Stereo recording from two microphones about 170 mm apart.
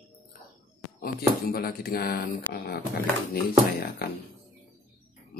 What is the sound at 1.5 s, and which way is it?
Speech, 60° left (ahead or behind).